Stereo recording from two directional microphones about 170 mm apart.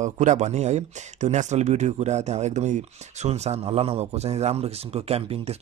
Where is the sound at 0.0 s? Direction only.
45° right (ahead or behind).